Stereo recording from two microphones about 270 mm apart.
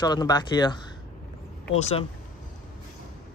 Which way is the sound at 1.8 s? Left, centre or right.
Left.